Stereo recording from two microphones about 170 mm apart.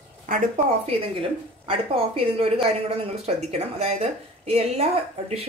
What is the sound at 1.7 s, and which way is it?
A woman's voice, 35° right (ahead or behind).